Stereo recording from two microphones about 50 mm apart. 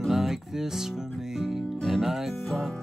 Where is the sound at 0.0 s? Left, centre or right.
Centre.